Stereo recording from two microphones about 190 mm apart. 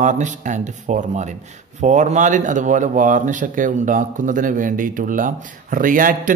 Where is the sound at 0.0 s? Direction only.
40° right (ahead or behind).